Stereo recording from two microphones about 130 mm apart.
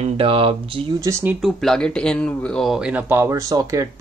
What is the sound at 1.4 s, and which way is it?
Speech, 5° left (ahead or behind).